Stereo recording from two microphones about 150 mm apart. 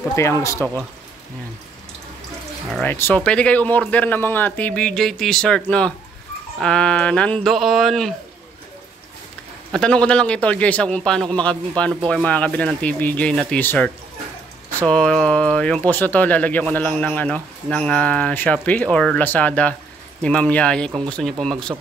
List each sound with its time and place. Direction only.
0.1 s speech: 20° left (ahead or behind)
2.7 s speech: 10° left (ahead or behind)
9.7 s speech: 5° left (ahead or behind)